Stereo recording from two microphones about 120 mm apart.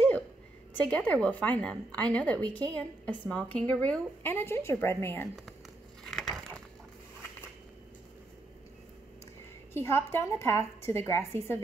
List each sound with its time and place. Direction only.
0.7 s a woman's voice: 10° left (ahead or behind)
6.0 s crushing: centre (ahead or behind)
9.8 s a woman's voice: 20° left (ahead or behind)